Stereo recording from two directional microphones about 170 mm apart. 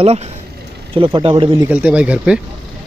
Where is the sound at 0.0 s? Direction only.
40° right (ahead or behind).